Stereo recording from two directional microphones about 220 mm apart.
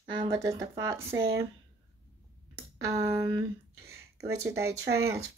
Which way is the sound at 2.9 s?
15° right (ahead or behind).